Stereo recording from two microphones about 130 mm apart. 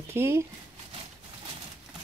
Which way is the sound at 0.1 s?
20° right (ahead or behind).